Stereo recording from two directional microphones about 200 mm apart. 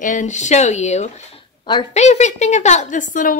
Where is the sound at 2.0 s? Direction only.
35° left (ahead or behind).